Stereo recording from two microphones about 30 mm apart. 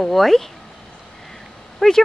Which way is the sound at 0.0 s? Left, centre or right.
Centre.